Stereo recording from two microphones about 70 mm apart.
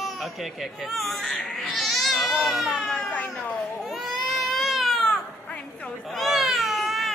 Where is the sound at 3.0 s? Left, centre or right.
Left.